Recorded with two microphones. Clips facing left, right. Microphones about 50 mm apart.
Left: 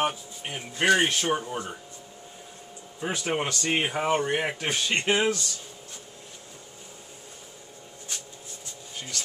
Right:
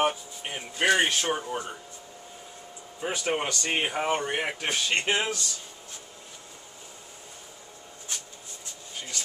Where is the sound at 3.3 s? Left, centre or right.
Centre.